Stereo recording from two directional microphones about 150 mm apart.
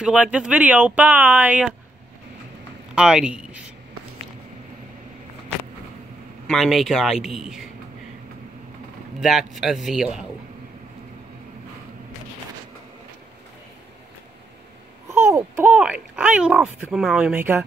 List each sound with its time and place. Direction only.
0.0 s a child's voice: 5° right (ahead or behind)
2.9 s speech: 5° right (ahead or behind)
6.4 s a man's voice: centre (ahead or behind)
9.2 s a man's voice: centre (ahead or behind)
15.0 s a child's voice: 20° right (ahead or behind)